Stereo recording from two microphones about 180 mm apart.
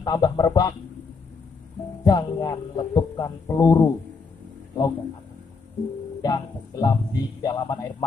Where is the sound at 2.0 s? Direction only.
20° left (ahead or behind).